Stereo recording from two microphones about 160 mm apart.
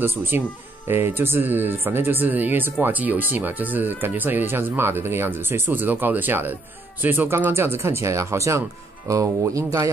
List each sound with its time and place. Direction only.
0.0 s speech: 15° right (ahead or behind)